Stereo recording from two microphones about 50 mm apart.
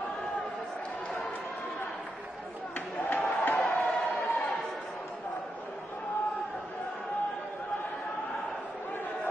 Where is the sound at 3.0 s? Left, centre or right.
Left.